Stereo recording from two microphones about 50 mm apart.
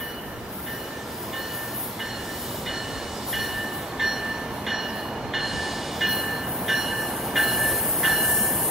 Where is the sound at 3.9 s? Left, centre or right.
Centre.